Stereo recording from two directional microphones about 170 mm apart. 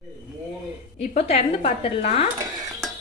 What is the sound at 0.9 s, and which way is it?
Speech, 35° left (ahead or behind).